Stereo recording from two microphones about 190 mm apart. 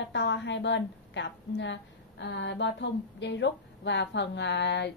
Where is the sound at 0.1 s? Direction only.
65° left (ahead or behind).